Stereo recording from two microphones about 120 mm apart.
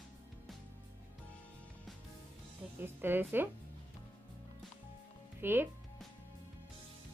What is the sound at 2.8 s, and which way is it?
Speech, 15° right (ahead or behind).